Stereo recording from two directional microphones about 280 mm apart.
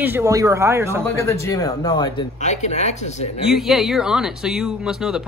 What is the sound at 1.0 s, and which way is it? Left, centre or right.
Speech, centre.